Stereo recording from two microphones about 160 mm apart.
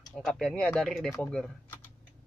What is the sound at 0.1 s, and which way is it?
Speech, 5° left (ahead or behind).